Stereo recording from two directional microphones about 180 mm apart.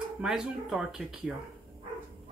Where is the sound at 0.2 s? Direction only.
5° right (ahead or behind).